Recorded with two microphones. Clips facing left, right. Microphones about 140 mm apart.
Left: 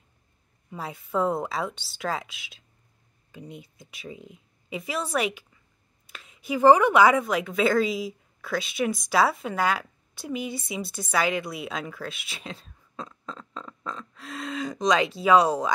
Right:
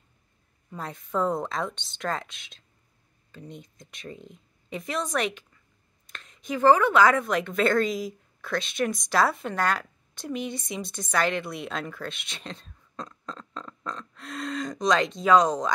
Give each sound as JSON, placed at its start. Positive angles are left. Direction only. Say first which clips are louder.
{"t": 0.7, "sound": "a woman's voice", "louder": "left 1 dB", "side_deg": 5}